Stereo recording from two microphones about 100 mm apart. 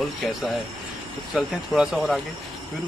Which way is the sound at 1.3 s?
5° right (ahead or behind).